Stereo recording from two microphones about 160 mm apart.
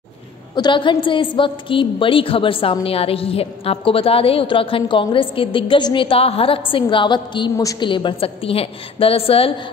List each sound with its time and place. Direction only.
0.6 s a woman's voice: 30° left (ahead or behind)